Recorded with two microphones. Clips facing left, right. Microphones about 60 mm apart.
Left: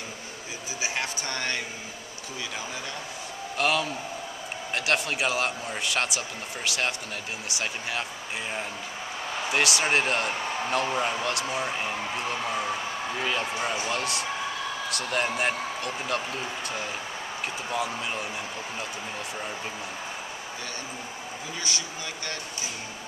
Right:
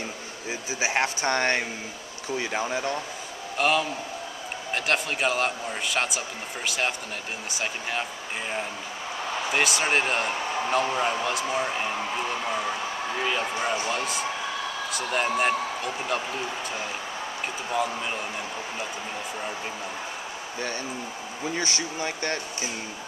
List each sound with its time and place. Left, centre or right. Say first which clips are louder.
0.7 s speech: right 6 dB; right
3.5 s a man's voice: right 2 dB; centre
9.5 s a man's voice: even; centre
13.2 s a man's voice: right 2 dB; centre
21.5 s speech: right 4 dB; right